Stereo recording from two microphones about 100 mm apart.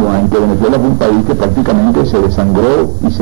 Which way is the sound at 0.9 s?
Centre (ahead or behind).